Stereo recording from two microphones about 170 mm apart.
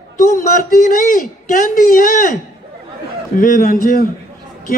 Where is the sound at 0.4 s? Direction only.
50° left (ahead or behind).